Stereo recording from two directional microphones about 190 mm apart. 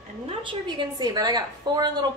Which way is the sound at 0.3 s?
25° right (ahead or behind).